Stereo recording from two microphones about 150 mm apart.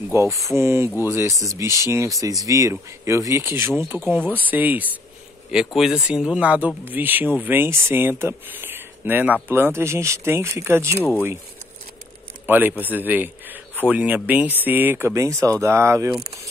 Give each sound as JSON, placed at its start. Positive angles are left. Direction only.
{"t": 0.1, "sound": "speech", "side_deg": -20}
{"t": 12.4, "sound": "speech", "side_deg": -10}